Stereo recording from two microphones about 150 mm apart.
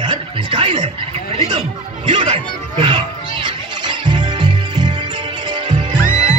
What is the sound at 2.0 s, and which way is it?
Speech, 35° right (ahead or behind).